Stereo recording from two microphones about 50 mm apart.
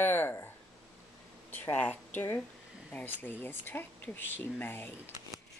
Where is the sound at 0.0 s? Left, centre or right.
Left.